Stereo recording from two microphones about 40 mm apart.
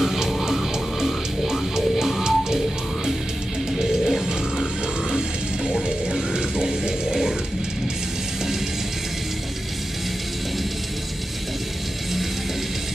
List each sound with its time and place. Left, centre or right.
0.0 s music: centre
3.7 s music: centre
5.7 s music: centre